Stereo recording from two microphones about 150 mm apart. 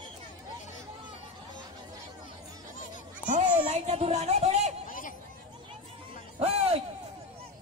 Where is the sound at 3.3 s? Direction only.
50° right (ahead or behind).